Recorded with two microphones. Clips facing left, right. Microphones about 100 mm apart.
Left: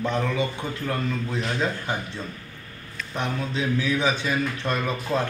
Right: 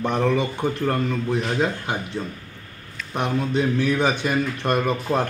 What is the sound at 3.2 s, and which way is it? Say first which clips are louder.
A man's voice: right 5 dB; 60° right (ahead or behind).